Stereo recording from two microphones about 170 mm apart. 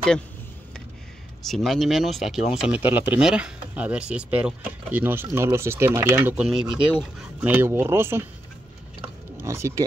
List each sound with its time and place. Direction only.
1.4 s speech: centre (ahead or behind); by 8.3 s 15° right (ahead or behind)
9.4 s speech: 15° right (ahead or behind)